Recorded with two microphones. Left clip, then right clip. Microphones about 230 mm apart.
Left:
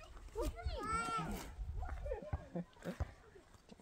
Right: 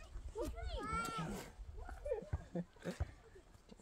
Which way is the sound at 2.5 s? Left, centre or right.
Right.